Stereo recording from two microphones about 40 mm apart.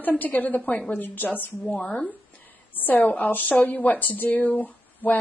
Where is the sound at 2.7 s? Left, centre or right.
Left.